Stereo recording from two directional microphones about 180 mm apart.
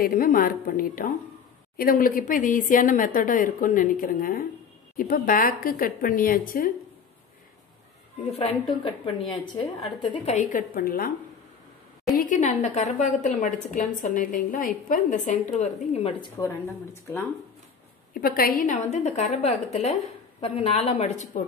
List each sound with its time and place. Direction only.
0.0 s a woman's voice: 55° left (ahead or behind)
8.3 s a woman's voice: 35° left (ahead or behind)
10.3 s a woman's voice: 50° left (ahead or behind)
12.2 s a woman's voice: 45° left (ahead or behind)
18.1 s a woman's voice: 55° left (ahead or behind)